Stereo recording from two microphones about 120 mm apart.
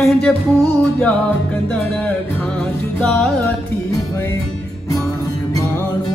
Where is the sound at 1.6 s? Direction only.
10° left (ahead or behind).